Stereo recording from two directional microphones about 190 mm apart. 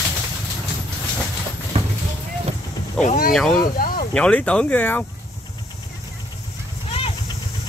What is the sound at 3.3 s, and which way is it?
Speech, 5° left (ahead or behind).